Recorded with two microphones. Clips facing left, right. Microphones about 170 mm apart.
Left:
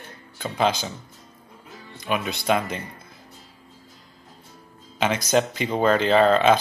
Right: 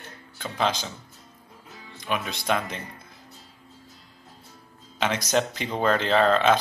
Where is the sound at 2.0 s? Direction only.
5° left (ahead or behind).